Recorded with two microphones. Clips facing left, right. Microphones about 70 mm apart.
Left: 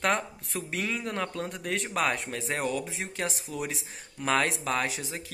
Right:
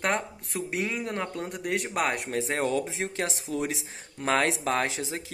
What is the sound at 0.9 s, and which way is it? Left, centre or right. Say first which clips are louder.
Speech: even; right.